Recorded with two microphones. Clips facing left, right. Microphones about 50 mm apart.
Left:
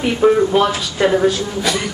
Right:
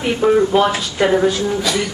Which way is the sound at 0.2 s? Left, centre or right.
Centre.